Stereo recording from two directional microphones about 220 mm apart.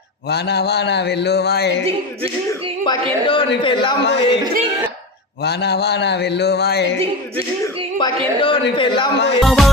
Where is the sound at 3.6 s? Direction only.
20° left (ahead or behind).